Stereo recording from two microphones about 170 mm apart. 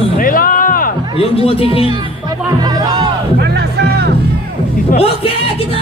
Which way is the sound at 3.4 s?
70° right (ahead or behind).